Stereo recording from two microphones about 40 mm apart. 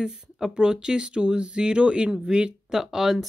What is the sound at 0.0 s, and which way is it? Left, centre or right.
Speech, centre.